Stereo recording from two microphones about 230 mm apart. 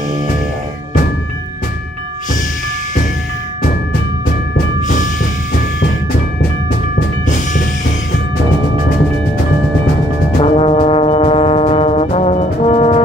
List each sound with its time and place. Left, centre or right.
10.4 s music: left